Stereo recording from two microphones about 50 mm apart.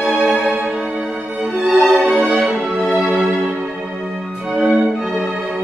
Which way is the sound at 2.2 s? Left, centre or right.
Centre.